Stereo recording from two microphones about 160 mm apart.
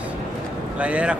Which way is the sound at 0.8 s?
10° right (ahead or behind).